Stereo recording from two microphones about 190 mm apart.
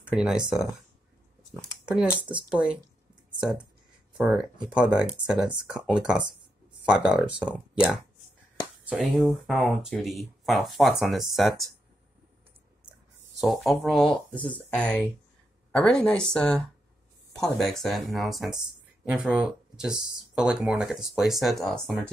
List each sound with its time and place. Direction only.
0.0 s speech: 5° right (ahead or behind)
3.3 s a sound: 5° right (ahead or behind)
4.2 s speech: 5° right (ahead or behind)
13.4 s speech: centre (ahead or behind)